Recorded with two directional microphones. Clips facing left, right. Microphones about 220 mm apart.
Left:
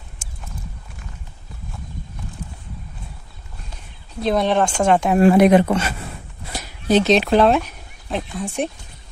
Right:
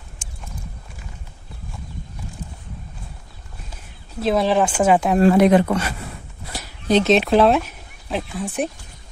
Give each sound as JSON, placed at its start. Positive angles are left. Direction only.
{"t": 4.2, "sound": "speech", "side_deg": -5}
{"t": 5.1, "sound": "speech", "side_deg": 15}
{"t": 6.9, "sound": "speech", "side_deg": 0}